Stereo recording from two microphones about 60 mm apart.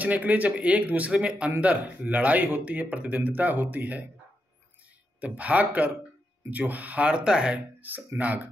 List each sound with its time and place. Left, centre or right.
0.0 s speech: right
5.2 s speech: right
7.8 s speech: right